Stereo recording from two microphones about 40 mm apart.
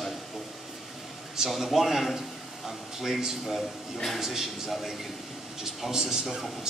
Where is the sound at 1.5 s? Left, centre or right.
Centre.